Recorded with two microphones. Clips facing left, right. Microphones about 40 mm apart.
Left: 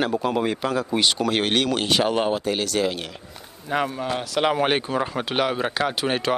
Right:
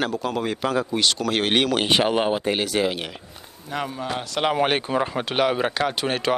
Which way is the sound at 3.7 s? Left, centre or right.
Centre.